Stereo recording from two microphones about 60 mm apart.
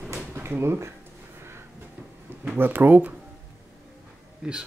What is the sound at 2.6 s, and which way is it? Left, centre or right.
Speech, right.